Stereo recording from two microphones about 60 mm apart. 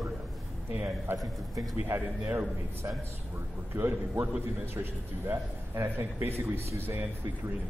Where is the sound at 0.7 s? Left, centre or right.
Right.